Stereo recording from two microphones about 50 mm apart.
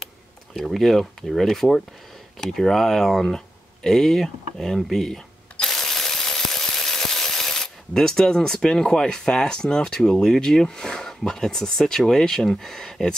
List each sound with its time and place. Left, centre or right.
0.7 s speech: centre
4.7 s a sound: centre
8.6 s speech: centre